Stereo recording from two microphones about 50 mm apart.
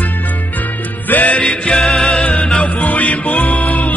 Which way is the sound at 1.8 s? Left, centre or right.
Centre.